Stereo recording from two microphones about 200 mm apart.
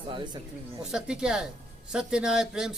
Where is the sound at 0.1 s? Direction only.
20° right (ahead or behind).